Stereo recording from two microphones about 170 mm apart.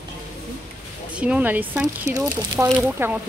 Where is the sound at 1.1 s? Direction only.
5° right (ahead or behind).